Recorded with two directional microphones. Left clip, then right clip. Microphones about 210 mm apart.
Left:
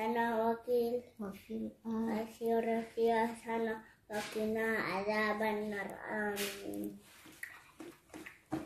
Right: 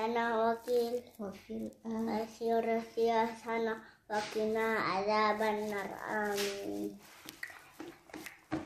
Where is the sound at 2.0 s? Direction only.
Centre (ahead or behind).